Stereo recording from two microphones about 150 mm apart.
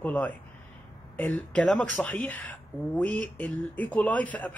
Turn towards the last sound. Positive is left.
turn(degrees=10)  # may be behind; listen again after turning